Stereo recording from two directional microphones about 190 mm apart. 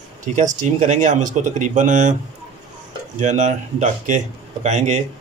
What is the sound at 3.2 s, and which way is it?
Speech, 40° right (ahead or behind).